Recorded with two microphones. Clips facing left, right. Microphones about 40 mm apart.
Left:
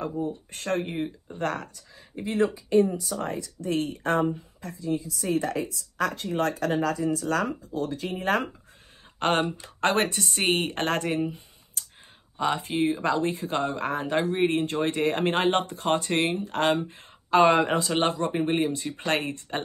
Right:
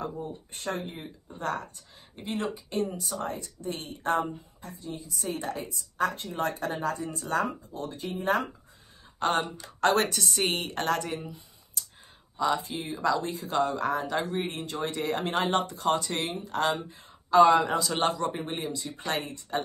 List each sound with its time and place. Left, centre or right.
0.5 s speech: left
3.3 s a woman's voice: left
6.2 s speech: left
6.6 s a woman's voice: left
9.2 s speech: left
9.6 s speech: left